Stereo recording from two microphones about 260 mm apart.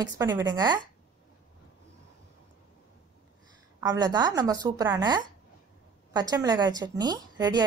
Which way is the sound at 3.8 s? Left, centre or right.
Centre.